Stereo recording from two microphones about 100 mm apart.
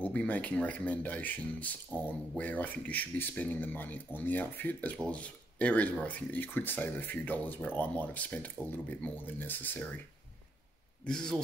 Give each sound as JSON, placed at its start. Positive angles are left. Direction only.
{"t": 0.0, "sound": "speech", "side_deg": 15}
{"t": 11.1, "sound": "speech", "side_deg": 5}